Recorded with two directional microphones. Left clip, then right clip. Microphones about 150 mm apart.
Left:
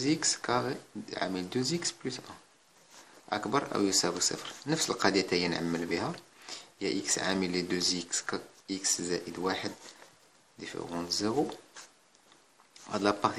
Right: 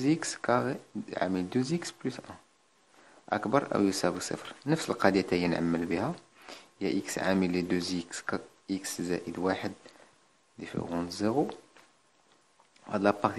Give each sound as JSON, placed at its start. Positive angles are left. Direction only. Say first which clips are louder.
{"t": 0.0, "sound": "speech", "louder": "right 1 dB", "side_deg": -45}
{"t": 12.9, "sound": "speech", "louder": "right 1 dB", "side_deg": -40}